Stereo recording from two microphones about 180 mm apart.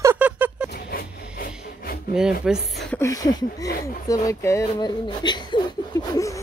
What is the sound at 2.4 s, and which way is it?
Speech, centre (ahead or behind).